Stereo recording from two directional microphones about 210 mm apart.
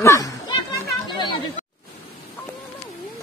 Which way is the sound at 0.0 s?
15° left (ahead or behind).